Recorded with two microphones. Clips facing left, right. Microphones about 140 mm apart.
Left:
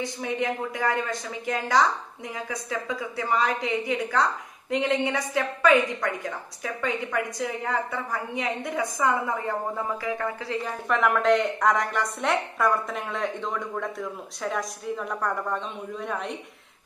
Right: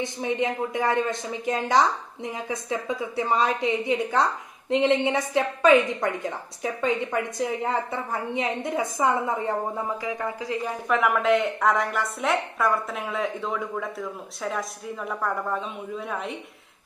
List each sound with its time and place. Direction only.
0.0 s a woman's voice: 20° right (ahead or behind)
10.9 s a woman's voice: 5° right (ahead or behind)